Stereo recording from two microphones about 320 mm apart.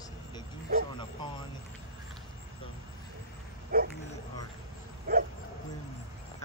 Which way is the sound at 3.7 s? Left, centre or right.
Right.